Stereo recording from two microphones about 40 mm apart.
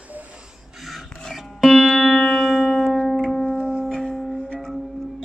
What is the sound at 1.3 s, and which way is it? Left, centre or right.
Music, centre.